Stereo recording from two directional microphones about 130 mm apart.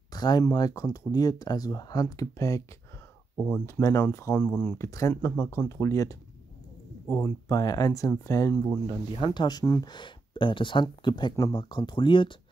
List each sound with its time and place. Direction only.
0.1 s speech: 30° left (ahead or behind)
3.3 s speech: 10° left (ahead or behind)
3.6 s speech: 20° left (ahead or behind)
4.7 s speech: 25° left (ahead or behind)
9.2 s speech: 35° left (ahead or behind)